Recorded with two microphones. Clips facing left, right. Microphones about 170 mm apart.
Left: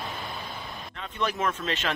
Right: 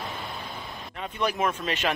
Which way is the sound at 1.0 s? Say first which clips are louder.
Right 2 dB; 10° right (ahead or behind).